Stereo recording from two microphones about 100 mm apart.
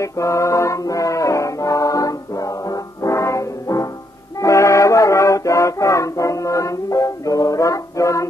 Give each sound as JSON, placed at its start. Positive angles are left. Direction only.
{"t": 0.0, "sound": "music", "side_deg": 30}